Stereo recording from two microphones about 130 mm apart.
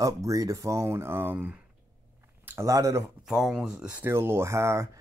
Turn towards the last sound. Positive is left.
turn(degrees=-20)  # may be behind; listen again after turning